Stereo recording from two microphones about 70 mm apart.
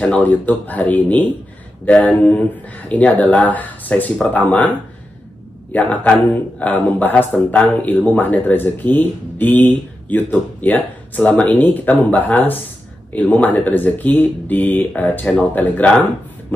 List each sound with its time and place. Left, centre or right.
0.2 s a man's voice: left